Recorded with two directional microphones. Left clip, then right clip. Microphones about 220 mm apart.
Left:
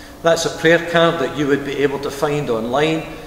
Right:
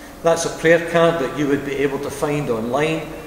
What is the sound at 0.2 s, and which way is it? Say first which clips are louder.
A man's voice: left 2 dB; 20° left (ahead or behind).